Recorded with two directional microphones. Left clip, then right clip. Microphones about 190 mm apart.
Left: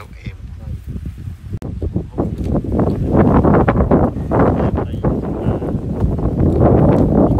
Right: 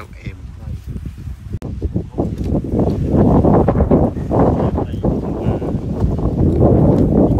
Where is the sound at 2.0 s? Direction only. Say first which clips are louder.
Even; 35° right (ahead or behind).